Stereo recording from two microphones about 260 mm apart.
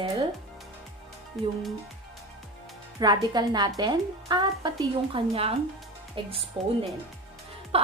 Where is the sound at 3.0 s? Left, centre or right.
Centre.